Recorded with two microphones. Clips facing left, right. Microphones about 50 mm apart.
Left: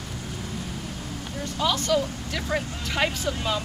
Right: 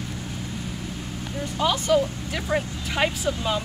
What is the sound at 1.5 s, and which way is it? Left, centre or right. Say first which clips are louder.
Speech: right 3 dB; centre.